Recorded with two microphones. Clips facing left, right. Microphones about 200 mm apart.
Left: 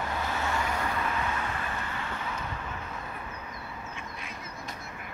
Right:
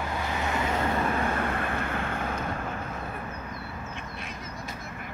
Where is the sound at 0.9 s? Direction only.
50° right (ahead or behind).